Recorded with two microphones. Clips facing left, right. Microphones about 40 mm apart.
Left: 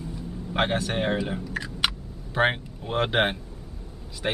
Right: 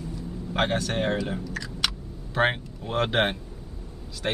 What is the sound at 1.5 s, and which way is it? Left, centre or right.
Chewing, left.